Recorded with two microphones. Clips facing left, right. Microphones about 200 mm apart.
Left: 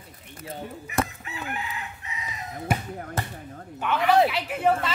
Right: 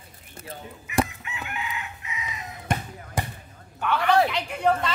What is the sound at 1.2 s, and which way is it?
Chicken, 35° left (ahead or behind).